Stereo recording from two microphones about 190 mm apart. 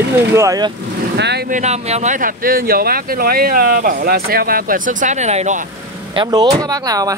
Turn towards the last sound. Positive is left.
turn(degrees=-20)  # may be behind; listen again after turning